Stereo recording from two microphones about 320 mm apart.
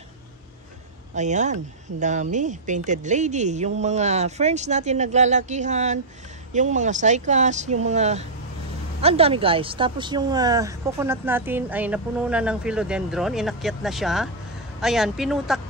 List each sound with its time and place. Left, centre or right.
1.1 s a woman's voice: right; by 15.6 s centre